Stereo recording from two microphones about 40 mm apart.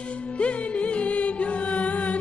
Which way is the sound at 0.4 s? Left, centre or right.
Left.